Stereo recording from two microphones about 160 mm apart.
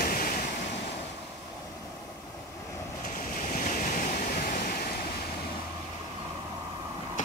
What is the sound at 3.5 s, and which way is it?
Waves, 55° left (ahead or behind).